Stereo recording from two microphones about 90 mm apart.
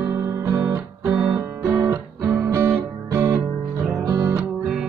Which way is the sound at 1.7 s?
30° right (ahead or behind).